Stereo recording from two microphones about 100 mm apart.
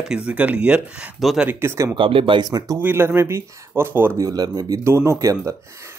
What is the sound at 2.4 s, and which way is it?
Speech, 40° right (ahead or behind).